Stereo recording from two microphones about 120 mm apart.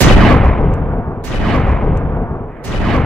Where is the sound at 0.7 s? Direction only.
15° left (ahead or behind).